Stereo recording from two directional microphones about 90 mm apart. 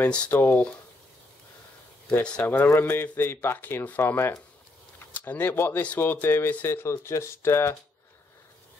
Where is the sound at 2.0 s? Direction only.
15° left (ahead or behind).